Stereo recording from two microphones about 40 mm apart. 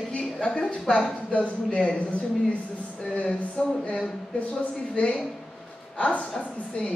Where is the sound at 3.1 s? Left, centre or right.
Left.